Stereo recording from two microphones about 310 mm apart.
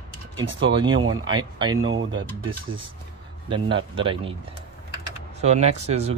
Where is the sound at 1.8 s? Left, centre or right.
Right.